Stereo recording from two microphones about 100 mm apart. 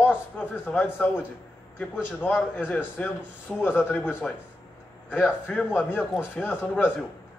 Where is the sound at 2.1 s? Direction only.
20° left (ahead or behind).